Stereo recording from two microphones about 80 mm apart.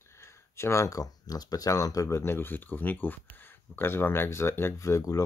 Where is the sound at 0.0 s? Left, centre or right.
Left.